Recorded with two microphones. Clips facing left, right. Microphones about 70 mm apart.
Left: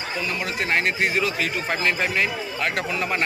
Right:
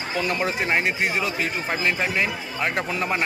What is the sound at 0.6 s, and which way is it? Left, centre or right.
A man's voice, centre.